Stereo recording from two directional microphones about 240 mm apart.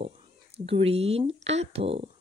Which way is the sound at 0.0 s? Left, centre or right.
Right.